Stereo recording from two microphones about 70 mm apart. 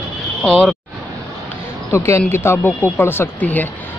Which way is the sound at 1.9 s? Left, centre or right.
Left.